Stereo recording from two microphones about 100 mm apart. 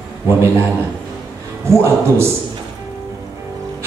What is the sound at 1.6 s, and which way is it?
Speech, 25° right (ahead or behind).